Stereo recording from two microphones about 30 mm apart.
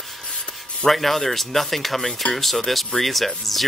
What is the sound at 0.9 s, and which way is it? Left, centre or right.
Speech, centre.